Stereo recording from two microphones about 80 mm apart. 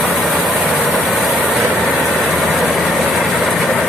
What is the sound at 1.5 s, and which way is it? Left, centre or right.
Vehicle, left.